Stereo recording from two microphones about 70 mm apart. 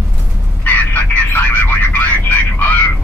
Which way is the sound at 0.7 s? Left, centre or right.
Left.